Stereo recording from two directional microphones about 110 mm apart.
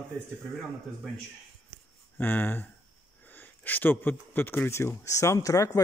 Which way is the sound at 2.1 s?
20° left (ahead or behind).